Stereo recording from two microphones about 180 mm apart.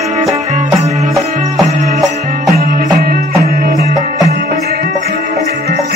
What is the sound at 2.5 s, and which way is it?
Music, 55° right (ahead or behind).